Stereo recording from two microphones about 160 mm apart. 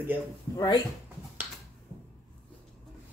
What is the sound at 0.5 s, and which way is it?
Speech, 25° left (ahead or behind).